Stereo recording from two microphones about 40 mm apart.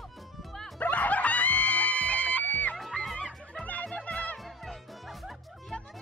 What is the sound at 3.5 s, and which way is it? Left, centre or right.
Music, left.